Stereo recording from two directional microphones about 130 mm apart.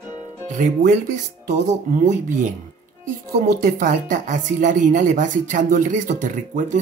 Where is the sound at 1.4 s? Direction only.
75° right (ahead or behind).